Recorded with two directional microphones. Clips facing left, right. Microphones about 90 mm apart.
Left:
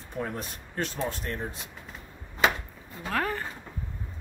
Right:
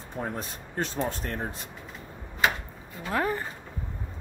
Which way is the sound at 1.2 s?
40° right (ahead or behind).